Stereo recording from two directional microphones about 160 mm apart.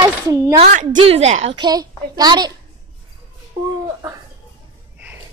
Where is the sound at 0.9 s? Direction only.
35° right (ahead or behind).